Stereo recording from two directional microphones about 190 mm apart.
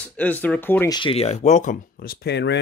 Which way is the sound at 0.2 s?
10° left (ahead or behind).